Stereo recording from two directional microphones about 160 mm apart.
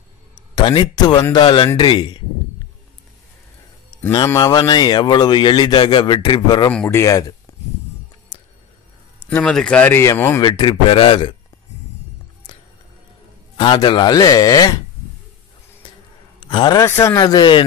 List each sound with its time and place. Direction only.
0.6 s a man's voice: 30° left (ahead or behind)
4.1 s a man's voice: 25° left (ahead or behind)
6.7 s speech: 5° left (ahead or behind)
7.0 s a man's voice: 20° left (ahead or behind)
7.5 s a sound: 20° left (ahead or behind)
8.3 s a sound: 30° left (ahead or behind)
9.3 s speech: 5° left (ahead or behind)
10.4 s a man's voice: 30° left (ahead or behind)
13.6 s a man's voice: 30° left (ahead or behind)
16.4 s a man's voice: 25° left (ahead or behind)